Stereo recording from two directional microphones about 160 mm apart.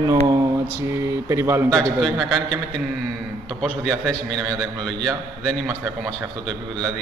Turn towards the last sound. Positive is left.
turn(degrees=0)  # may be behind; listen again after turning